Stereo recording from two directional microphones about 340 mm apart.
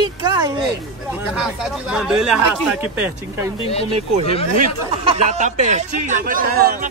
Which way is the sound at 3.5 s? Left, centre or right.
Centre.